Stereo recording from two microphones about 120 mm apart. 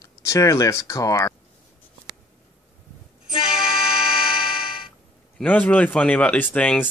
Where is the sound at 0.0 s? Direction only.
25° left (ahead or behind).